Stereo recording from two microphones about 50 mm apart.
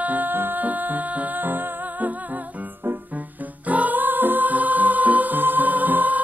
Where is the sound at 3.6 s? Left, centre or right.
Right.